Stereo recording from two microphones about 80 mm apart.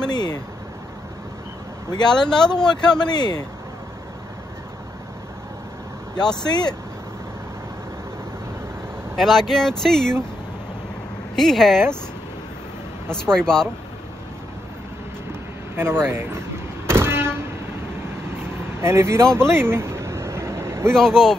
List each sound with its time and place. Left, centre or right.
0.1 s speech: left
1.9 s speech: left
2.1 s speech: centre
3.1 s speech: left
6.4 s speech: left
9.1 s speech: centre
11.3 s speech: centre
13.1 s speech: centre
15.7 s vehicle: right
18.8 s speech: right
19.5 s vehicle: right
20.9 s speech: centre